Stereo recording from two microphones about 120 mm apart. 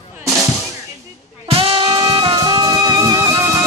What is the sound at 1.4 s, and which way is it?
Music, 50° right (ahead or behind).